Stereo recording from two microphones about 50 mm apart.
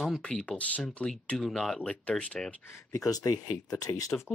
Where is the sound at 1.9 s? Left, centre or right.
Left.